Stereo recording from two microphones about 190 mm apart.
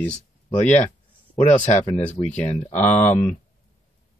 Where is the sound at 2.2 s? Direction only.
30° left (ahead or behind).